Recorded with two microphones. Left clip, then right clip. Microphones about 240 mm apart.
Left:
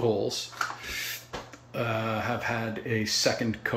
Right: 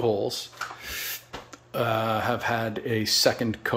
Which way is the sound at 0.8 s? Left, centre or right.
Right.